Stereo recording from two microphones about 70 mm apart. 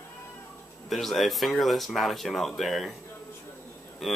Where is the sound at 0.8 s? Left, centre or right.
Centre.